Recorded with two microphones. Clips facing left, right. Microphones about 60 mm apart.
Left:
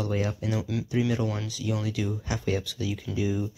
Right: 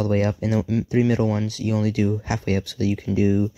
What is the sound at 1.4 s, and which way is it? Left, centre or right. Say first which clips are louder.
Speech: right 7 dB; right.